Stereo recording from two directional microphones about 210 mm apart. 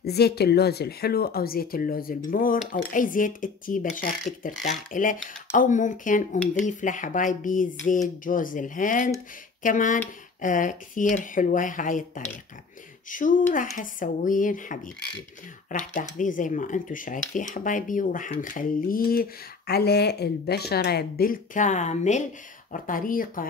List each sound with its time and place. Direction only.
0.0 s speech: 50° left (ahead or behind)
15.8 s speech: 40° left (ahead or behind)